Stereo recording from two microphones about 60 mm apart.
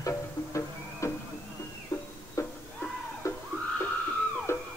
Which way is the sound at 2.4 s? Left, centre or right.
Left.